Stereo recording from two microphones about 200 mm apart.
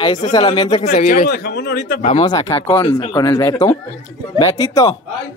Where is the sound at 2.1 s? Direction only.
25° left (ahead or behind).